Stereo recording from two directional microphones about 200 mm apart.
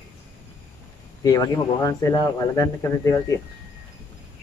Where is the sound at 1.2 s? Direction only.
20° left (ahead or behind).